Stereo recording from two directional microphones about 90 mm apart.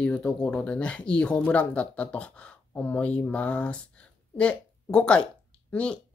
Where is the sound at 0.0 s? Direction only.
10° left (ahead or behind).